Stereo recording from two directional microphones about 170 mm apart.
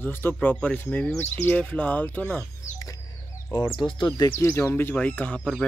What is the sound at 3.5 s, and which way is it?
Speech, 25° left (ahead or behind).